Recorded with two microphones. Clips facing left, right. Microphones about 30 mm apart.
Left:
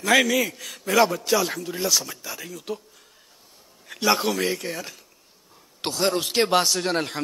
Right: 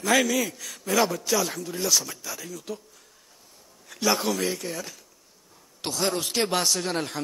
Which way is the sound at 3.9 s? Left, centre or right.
Left.